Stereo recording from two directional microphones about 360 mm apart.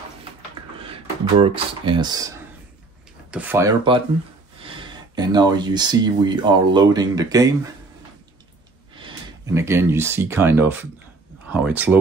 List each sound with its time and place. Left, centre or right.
1.4 s speech: centre
8.9 s speech: centre